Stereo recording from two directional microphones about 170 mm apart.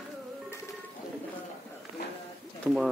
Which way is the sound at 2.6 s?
5° right (ahead or behind).